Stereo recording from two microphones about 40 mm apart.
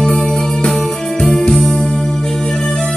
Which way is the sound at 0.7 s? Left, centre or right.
Centre.